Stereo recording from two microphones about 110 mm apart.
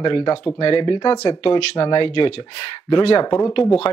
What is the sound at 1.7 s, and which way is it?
Speech, 40° left (ahead or behind).